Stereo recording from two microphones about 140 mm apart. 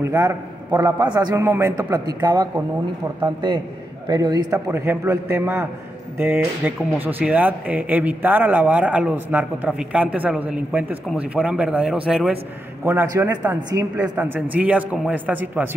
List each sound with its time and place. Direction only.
0.0 s a man's voice: 20° right (ahead or behind)
1.3 s a man's voice: 20° right (ahead or behind)
2.2 s speech: 30° right (ahead or behind)
4.1 s a man's voice: 30° right (ahead or behind)
4.6 s a man's voice: 20° right (ahead or behind)
13.1 s a man's voice: 15° right (ahead or behind)
14.1 s speech: 15° right (ahead or behind)